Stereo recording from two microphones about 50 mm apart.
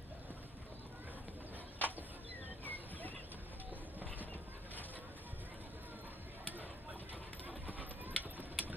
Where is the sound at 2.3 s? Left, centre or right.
Left.